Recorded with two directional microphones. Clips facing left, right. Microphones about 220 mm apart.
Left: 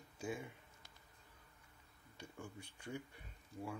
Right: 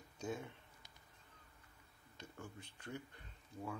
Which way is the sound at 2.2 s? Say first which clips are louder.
Left 1 dB; 10° left (ahead or behind).